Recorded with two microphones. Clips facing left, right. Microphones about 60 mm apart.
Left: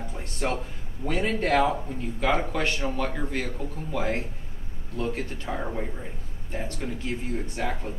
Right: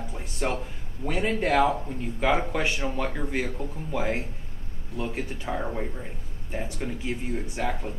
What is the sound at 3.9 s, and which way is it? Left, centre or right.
Speech, centre.